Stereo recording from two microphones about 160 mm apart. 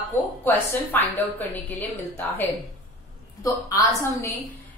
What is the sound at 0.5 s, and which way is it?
A woman's voice, 15° left (ahead or behind).